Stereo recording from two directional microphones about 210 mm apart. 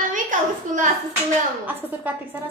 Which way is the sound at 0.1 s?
35° right (ahead or behind).